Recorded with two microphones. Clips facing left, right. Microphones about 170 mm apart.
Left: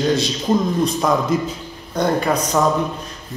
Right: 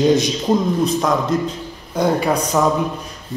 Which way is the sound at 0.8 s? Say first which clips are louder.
Even; centre (ahead or behind).